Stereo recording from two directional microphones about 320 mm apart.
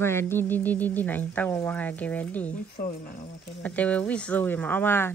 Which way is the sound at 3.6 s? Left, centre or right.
Centre.